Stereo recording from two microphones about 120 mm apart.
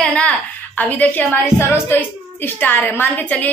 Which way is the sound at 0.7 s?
10° left (ahead or behind).